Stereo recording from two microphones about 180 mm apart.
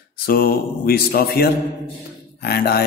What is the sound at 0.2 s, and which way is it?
Speech, 55° left (ahead or behind).